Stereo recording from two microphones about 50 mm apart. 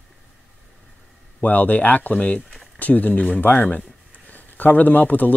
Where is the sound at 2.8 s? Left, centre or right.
Left.